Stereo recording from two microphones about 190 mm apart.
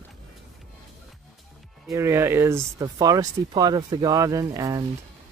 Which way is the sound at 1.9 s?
15° right (ahead or behind).